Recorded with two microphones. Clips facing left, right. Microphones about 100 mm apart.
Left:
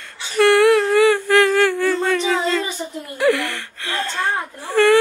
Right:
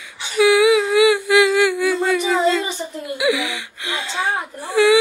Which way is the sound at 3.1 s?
10° right (ahead or behind).